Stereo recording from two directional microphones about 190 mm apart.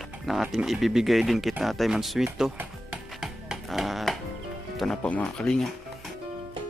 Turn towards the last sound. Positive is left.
turn(degrees=0)  # may be behind; listen again after turning